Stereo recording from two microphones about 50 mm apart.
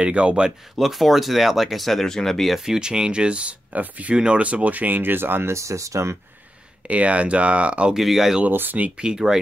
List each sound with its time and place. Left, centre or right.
0.0 s speech: right
0.7 s speech: centre
2.5 s speech: centre; by 4.1 s right
4.1 s speech: centre; by 5.5 s right
5.5 s speech: right
6.9 s speech: right
7.9 s speech: centre
8.5 s speech: right
8.9 s speech: centre